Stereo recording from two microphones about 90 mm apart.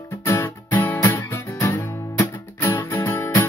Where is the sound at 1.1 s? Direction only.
30° left (ahead or behind).